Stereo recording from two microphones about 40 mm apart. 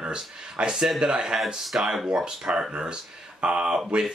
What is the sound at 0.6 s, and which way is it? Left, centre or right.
Speech, right.